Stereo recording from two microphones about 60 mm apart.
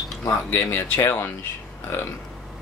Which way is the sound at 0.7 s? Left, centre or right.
Left.